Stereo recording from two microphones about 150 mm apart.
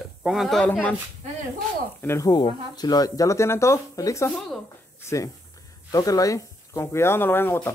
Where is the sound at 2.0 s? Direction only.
20° left (ahead or behind).